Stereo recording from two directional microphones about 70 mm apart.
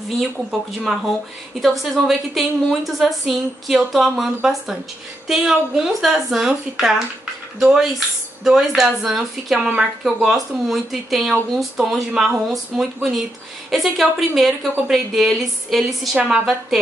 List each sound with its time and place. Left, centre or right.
0.2 s speech: centre
16.2 s a woman's voice: centre